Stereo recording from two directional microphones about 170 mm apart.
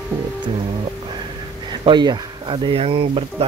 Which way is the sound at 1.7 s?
25° right (ahead or behind).